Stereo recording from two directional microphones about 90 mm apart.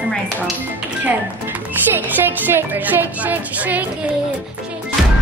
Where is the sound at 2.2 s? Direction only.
25° right (ahead or behind).